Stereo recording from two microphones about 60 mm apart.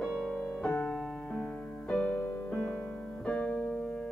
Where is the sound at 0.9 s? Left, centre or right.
Centre.